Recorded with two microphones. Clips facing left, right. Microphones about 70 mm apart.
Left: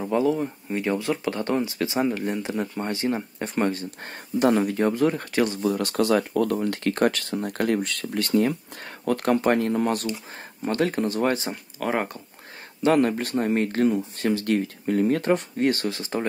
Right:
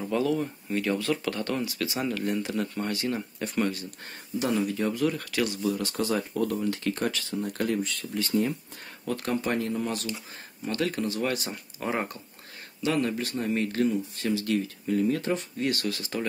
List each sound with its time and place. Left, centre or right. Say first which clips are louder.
0.0 s speech: left 4 dB; left
5.8 s speech: left 6 dB; left
10.6 s speech: left 5 dB; left
11.8 s speech: left 4 dB; left
12.8 s speech: left 7 dB; left